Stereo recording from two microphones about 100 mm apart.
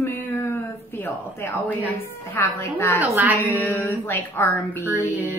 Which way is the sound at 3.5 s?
20° left (ahead or behind).